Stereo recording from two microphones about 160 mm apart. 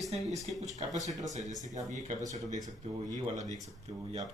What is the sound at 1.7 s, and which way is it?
Speech, 50° right (ahead or behind).